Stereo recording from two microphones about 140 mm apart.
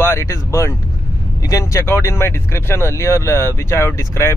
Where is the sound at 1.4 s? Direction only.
25° left (ahead or behind).